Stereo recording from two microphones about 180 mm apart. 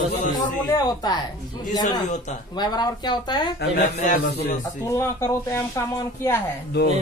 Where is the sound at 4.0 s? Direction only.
45° left (ahead or behind).